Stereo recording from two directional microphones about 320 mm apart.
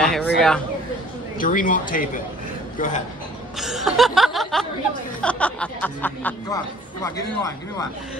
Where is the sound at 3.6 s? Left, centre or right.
Centre.